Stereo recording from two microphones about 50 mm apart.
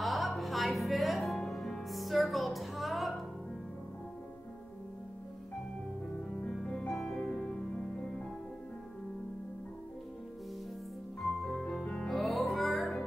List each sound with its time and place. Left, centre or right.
0.0 s music: centre
6.5 s music: centre
11.2 s music: centre
11.8 s music: left
12.1 s music: centre